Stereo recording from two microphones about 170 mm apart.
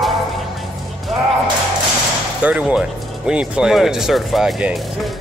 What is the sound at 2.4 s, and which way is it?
A man's voice, 5° right (ahead or behind).